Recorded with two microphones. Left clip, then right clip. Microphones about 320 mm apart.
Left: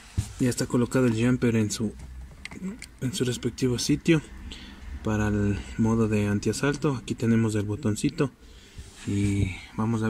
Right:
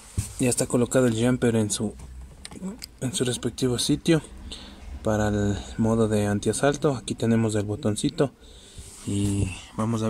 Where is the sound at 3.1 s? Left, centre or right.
Centre.